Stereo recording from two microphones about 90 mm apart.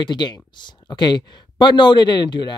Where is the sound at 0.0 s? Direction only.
55° left (ahead or behind).